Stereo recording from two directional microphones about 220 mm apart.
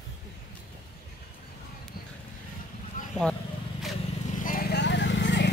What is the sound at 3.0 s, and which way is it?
Vehicle, 40° left (ahead or behind).